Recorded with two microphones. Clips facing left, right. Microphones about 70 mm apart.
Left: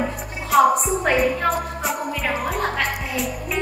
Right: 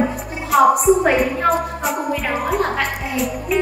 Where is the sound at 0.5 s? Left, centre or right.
Centre.